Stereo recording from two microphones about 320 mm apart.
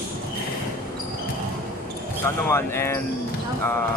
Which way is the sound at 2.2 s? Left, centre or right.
Centre.